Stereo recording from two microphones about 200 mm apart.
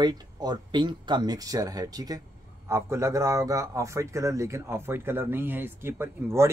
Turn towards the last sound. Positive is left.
turn(degrees=-10)  # may be behind; listen again after turning